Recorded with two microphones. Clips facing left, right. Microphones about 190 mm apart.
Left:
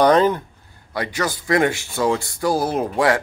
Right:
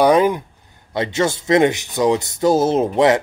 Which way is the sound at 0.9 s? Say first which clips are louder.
Right 5 dB; 25° right (ahead or behind).